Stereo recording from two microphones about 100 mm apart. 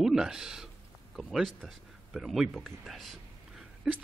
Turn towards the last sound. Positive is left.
turn(degrees=0)  # may be behind; listen again after turning